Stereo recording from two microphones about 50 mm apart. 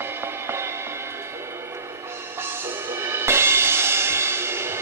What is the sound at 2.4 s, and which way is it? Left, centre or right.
Music, right.